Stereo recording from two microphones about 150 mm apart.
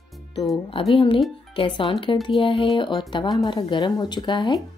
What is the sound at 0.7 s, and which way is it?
Speech, 40° left (ahead or behind).